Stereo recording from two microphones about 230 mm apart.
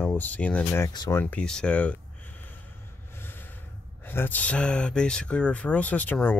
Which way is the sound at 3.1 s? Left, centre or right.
Centre.